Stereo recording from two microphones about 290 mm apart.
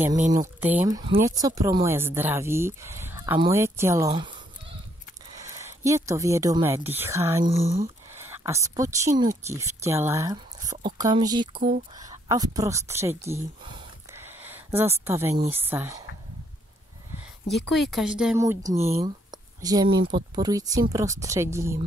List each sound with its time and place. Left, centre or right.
0.6 s speech: centre
5.4 s speech: centre
7.4 s speech: right
8.2 s speech: centre
11.5 s speech: right
12.0 s speech: centre
13.2 s a sound: centre
15.5 s speech: centre
17.5 s speech: centre